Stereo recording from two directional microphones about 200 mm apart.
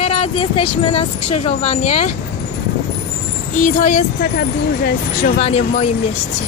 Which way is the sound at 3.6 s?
45° left (ahead or behind).